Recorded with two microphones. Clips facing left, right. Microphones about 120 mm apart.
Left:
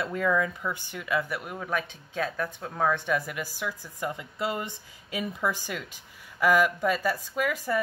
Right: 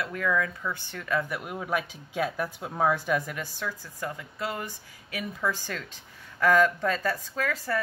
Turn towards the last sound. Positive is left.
turn(degrees=15)  # may be behind; listen again after turning